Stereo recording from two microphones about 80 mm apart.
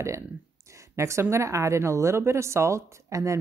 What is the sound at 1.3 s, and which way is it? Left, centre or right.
Speech, right.